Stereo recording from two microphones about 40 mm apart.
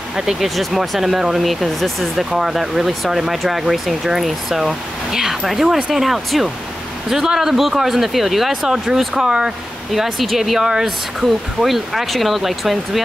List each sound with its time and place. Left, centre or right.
0.1 s speech: centre
9.9 s speech: centre
10.6 s speech: centre
11.2 s speech: centre